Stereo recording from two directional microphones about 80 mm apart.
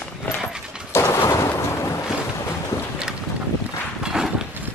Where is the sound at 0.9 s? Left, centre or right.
Left.